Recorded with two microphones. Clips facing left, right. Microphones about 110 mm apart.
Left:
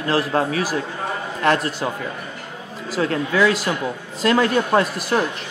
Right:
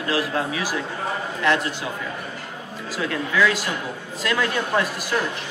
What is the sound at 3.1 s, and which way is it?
A man's voice, 35° left (ahead or behind).